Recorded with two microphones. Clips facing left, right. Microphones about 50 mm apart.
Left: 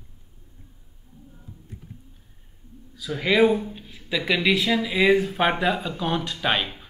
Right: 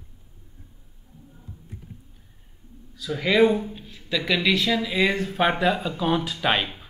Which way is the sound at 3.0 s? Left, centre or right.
Centre.